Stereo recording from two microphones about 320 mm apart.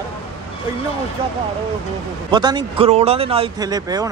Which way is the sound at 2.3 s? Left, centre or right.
Centre.